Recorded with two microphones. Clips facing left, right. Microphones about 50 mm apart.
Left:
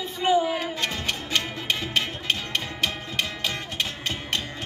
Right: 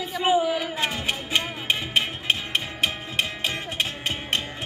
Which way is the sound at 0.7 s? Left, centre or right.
Centre.